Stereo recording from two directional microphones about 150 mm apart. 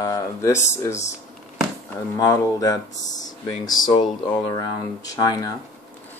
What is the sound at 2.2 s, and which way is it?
Speech, 25° left (ahead or behind).